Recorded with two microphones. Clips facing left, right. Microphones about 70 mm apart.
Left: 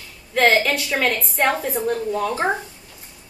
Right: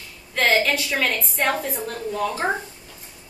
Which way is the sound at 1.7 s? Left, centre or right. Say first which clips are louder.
Left 5 dB; centre.